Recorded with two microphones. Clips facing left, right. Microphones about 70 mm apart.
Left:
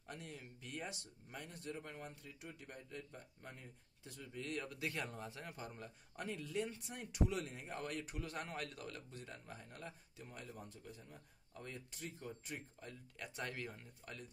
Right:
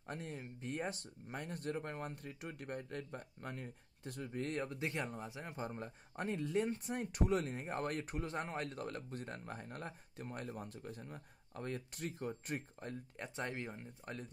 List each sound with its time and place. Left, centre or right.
0.0 s speech: right
8.2 s speech: right
13.2 s speech: right